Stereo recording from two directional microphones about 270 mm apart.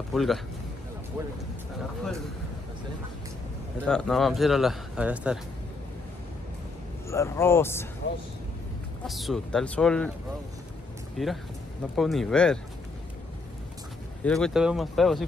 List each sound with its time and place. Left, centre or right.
0.1 s a man's voice: centre
3.8 s speech: centre
7.1 s speech: centre
8.0 s speech: left
9.0 s speech: centre
11.2 s speech: centre
14.2 s speech: centre